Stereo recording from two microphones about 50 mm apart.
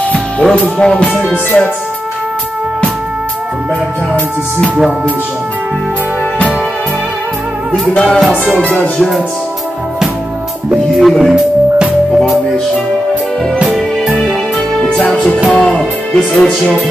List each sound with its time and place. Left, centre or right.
0.4 s speech: centre
1.3 s music: left
7.9 s music: centre
8.5 s speech: centre
8.7 s music: left
11.0 s speech: centre
15.5 s speech: centre